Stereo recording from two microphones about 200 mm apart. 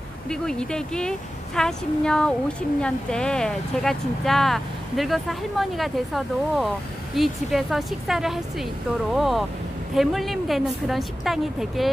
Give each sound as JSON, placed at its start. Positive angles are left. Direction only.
{"t": 0.3, "sound": "speech", "side_deg": 5}